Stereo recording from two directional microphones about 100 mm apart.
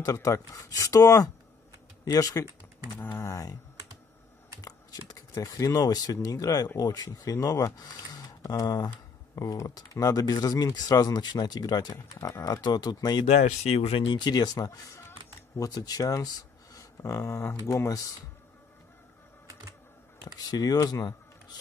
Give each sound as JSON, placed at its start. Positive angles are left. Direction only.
{"t": 0.0, "sound": "speech", "side_deg": 30}
{"t": 5.0, "sound": "speech", "side_deg": 35}
{"t": 13.2, "sound": "speech", "side_deg": 90}
{"t": 14.0, "sound": "speech", "side_deg": 50}
{"t": 20.2, "sound": "speech", "side_deg": 40}